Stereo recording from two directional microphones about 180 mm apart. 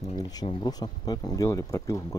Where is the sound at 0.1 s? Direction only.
20° left (ahead or behind).